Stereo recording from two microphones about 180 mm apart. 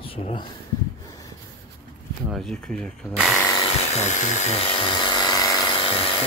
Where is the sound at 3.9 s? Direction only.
40° left (ahead or behind).